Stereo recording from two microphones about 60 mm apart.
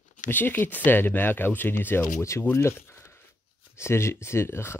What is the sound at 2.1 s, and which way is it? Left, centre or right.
Speech, left.